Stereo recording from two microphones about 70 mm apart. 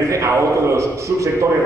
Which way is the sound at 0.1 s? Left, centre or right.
Right.